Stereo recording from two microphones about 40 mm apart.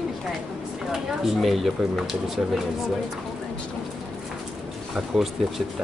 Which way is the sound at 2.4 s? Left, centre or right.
Right.